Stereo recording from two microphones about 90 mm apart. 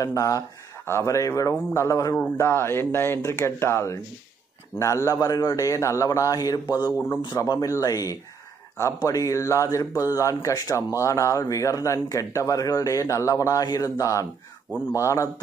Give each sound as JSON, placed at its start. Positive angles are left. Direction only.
{"t": 0.0, "sound": "a man's voice", "side_deg": 40}